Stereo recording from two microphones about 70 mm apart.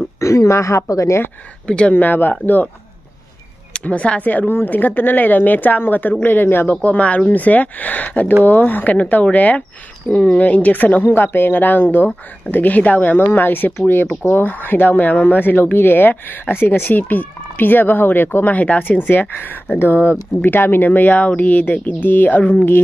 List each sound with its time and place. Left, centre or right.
0.2 s speech: left
1.7 s speech: centre
3.7 s speech: centre